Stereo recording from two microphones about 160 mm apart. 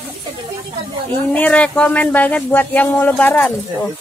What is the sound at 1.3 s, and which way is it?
Speech, 10° left (ahead or behind).